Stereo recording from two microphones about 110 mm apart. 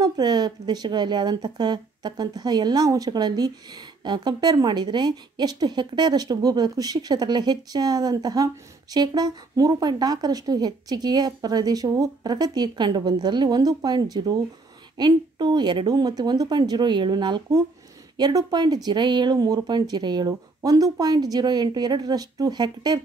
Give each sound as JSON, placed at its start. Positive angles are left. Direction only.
{"t": 0.0, "sound": "speech", "side_deg": -40}